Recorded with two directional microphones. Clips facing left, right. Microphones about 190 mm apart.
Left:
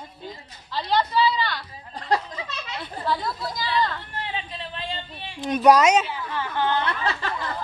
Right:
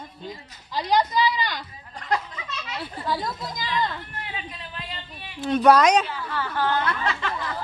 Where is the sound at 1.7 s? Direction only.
30° left (ahead or behind).